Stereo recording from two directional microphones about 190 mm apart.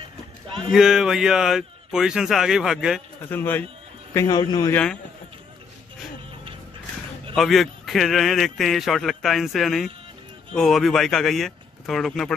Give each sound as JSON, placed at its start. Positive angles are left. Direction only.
{"t": 0.7, "sound": "a man's voice", "side_deg": 0}
{"t": 3.3, "sound": "a man's voice", "side_deg": 10}
{"t": 7.3, "sound": "a man's voice", "side_deg": 0}